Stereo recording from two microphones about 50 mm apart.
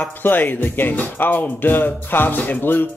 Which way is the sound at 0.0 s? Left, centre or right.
Left.